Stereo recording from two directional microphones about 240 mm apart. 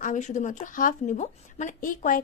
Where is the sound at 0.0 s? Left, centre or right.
Left.